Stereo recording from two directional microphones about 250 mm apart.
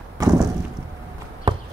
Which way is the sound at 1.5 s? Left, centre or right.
Centre.